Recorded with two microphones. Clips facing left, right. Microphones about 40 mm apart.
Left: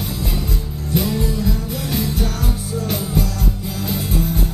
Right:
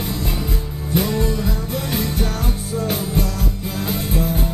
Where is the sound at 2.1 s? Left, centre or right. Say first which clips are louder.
Even; right.